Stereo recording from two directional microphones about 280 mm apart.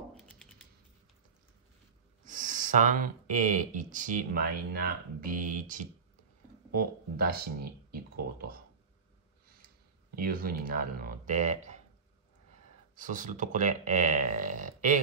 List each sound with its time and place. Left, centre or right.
0.2 s typing: centre
2.2 s speech: right
10.1 s speech: right
12.9 s speech: right